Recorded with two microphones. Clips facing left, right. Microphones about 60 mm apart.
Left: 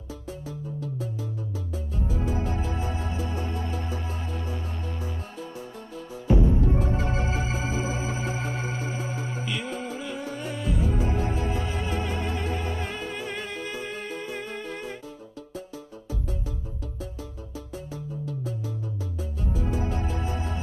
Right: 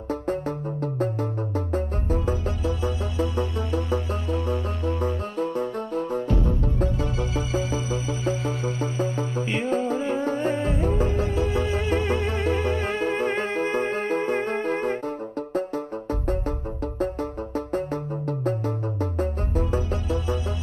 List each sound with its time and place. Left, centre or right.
0.1 s music: right
6.2 s music: left
6.9 s music: left
9.5 s music: right
11.2 s music: left
11.9 s music: right
17.7 s music: right